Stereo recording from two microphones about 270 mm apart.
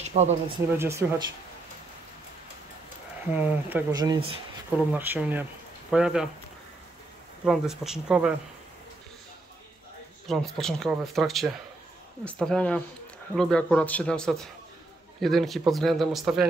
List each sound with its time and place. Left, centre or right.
0.0 s speech: right
0.7 s speech: centre
3.3 s speech: centre
7.4 s speech: centre
10.2 s speech: centre